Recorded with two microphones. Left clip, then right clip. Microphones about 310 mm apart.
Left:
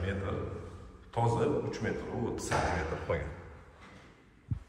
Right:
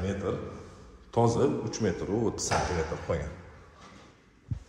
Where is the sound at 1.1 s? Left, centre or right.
Centre.